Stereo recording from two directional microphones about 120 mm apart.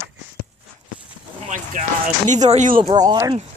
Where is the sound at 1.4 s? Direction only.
90° right.